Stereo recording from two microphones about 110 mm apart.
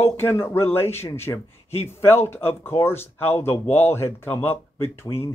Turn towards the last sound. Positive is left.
turn(degrees=20)  # may be behind; listen again after turning